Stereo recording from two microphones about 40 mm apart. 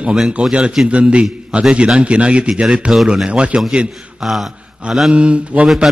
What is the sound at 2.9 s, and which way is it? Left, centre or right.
Speech, centre.